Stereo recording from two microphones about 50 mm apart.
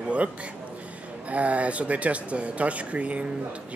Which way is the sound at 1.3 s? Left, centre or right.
Right.